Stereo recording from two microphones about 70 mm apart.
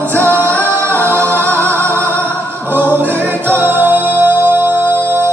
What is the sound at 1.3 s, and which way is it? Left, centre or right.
Music, right.